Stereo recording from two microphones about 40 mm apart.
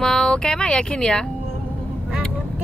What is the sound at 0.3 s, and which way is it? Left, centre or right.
Speech, left.